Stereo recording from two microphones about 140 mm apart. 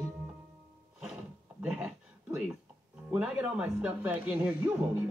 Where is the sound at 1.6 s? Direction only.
5° right (ahead or behind).